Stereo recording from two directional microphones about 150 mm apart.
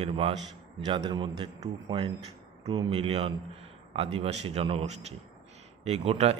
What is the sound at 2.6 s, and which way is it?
A man's voice, 35° right (ahead or behind).